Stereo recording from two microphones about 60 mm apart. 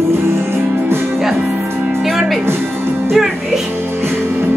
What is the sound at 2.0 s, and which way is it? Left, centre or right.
Music, centre.